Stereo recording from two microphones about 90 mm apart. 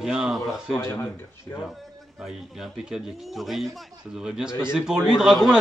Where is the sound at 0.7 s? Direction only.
25° left (ahead or behind).